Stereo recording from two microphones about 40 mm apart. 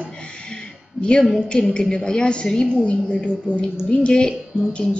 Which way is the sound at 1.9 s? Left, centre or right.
Centre.